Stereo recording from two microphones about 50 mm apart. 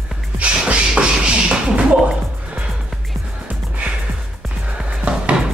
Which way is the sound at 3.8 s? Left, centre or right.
Right.